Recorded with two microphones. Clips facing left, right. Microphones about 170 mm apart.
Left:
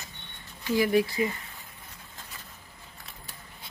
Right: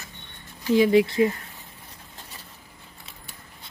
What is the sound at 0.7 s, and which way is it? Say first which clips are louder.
Speech: right 6 dB; 25° right (ahead or behind).